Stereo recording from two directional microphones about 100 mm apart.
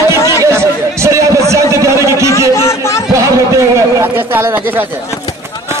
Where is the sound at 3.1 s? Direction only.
30° right (ahead or behind).